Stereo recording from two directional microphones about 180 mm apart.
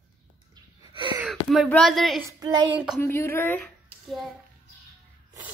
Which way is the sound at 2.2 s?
20° right (ahead or behind).